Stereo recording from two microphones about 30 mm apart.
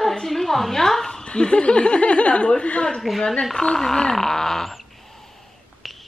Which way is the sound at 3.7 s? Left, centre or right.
Centre.